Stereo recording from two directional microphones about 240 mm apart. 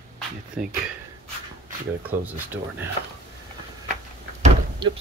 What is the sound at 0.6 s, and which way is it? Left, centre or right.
Speech, centre.